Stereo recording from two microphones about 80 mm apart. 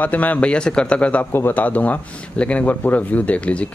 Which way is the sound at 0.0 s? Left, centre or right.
Left.